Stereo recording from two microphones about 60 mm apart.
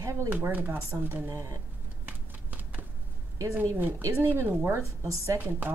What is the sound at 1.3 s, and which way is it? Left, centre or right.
Speech, right.